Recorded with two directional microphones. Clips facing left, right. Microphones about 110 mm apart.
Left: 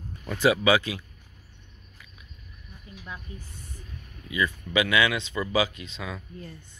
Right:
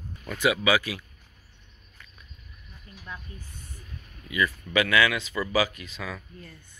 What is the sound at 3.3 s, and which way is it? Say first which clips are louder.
Speech: left 2 dB; 20° left (ahead or behind).